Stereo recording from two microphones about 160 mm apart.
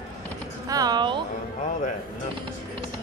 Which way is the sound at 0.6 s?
25° right (ahead or behind).